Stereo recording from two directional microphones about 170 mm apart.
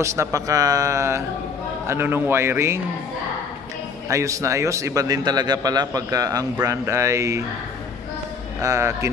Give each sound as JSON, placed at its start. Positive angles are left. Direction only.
{"t": 0.0, "sound": "a man's voice", "side_deg": -15}
{"t": 4.1, "sound": "a man's voice", "side_deg": -20}
{"t": 8.5, "sound": "speech", "side_deg": -15}